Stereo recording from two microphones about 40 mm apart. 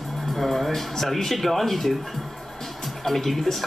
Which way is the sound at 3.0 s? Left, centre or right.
Centre.